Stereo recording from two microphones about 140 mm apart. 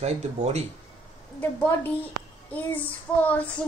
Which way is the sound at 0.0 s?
50° right (ahead or behind).